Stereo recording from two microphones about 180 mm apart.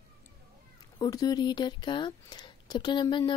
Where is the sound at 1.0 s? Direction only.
20° left (ahead or behind).